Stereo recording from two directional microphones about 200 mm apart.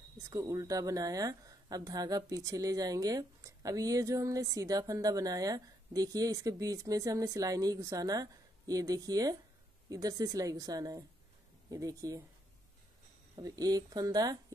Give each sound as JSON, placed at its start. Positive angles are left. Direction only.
{"t": 0.3, "sound": "a woman's voice", "side_deg": -15}
{"t": 13.4, "sound": "speech", "side_deg": -20}